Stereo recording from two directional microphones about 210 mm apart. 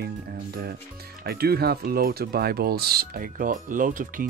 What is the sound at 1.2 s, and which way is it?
Speech, 45° right (ahead or behind).